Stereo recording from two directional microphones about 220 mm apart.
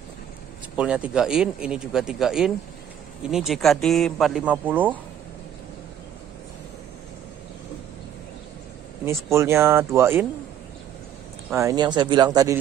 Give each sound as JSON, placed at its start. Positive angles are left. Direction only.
{"t": 0.7, "sound": "speech", "side_deg": -5}
{"t": 9.0, "sound": "speech", "side_deg": -10}
{"t": 11.5, "sound": "speech", "side_deg": -15}